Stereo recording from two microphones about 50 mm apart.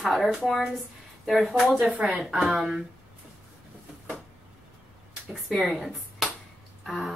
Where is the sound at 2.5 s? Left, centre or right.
Centre.